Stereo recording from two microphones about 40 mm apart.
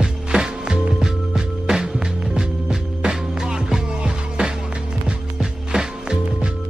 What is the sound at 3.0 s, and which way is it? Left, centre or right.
Music, centre.